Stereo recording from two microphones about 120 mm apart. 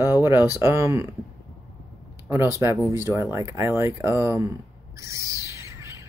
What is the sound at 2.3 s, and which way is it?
Speech, 25° right (ahead or behind).